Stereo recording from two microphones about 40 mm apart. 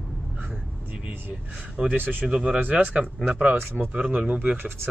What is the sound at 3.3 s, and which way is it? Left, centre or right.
Speech, right.